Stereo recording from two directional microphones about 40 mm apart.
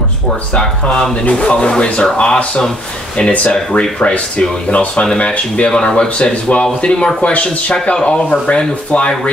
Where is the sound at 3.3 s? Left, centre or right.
Left.